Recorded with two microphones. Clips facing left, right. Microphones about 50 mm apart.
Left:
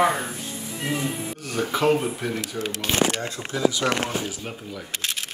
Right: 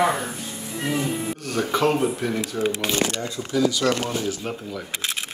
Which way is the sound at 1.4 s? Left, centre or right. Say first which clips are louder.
Even; centre.